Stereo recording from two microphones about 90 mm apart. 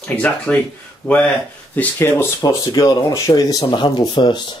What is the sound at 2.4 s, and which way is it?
Speech, 45° left (ahead or behind).